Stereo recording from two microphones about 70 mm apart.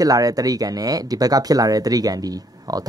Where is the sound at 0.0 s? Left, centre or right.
Right.